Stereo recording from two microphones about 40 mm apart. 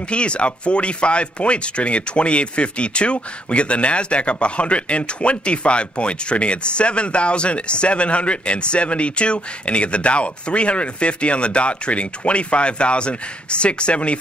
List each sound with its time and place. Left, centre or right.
0.1 s speech: left